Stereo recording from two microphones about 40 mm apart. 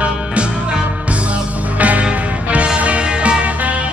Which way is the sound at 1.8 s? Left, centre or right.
Right.